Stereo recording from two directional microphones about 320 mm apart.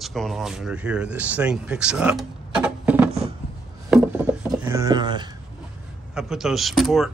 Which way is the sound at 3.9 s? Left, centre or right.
Centre.